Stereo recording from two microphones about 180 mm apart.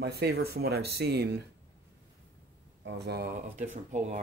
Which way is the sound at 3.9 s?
40° right (ahead or behind).